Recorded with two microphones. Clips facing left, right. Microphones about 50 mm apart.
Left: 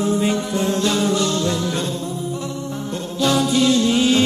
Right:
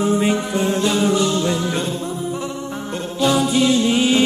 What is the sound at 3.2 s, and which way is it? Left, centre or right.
Music, centre.